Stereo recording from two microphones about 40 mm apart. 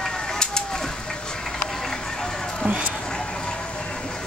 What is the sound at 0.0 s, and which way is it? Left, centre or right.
Pigeon, centre.